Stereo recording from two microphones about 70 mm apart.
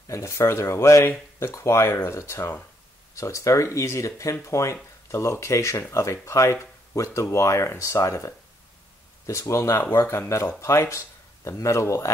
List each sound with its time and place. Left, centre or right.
0.1 s speech: left